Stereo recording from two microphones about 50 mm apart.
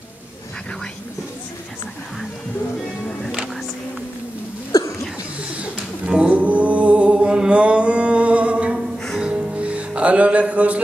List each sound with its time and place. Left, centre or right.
6.0 s music: right